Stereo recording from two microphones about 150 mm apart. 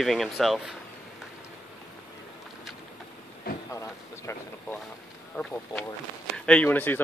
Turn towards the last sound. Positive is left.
turn(degrees=10)  # may be behind; listen again after turning